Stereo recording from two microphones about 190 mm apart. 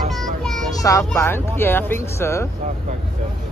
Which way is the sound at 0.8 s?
15° left (ahead or behind).